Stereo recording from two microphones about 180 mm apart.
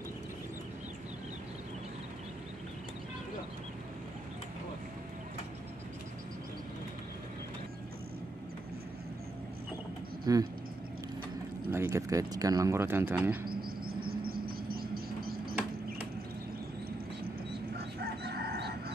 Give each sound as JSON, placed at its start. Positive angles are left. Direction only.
{"t": 10.3, "sound": "speech", "side_deg": -20}
{"t": 11.7, "sound": "speech", "side_deg": -15}
{"t": 13.5, "sound": "a sound", "side_deg": -55}
{"t": 17.7, "sound": "chicken", "side_deg": -60}